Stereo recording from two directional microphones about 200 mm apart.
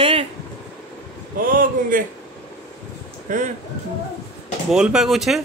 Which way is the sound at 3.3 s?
40° right (ahead or behind).